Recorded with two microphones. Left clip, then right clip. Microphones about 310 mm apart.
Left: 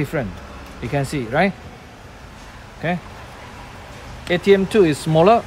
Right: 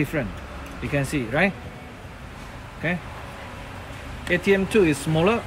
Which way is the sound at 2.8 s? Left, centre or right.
Left.